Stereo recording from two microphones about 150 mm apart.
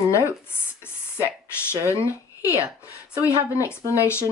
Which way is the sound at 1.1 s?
15° left (ahead or behind).